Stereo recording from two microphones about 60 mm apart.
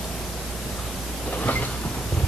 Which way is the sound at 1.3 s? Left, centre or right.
Left.